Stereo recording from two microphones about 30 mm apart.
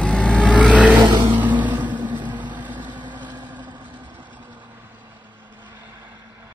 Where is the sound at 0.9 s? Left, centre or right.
Right.